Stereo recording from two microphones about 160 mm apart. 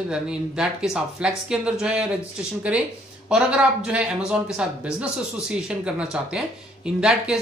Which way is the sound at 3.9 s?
5° right (ahead or behind).